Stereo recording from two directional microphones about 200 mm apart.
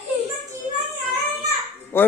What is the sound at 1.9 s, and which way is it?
Speech, 10° left (ahead or behind).